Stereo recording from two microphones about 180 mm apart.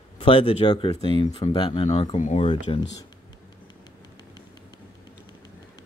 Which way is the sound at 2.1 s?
40° left (ahead or behind).